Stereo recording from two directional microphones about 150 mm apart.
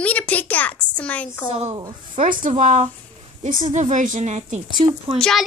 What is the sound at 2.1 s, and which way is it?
A woman's voice, 65° right (ahead or behind).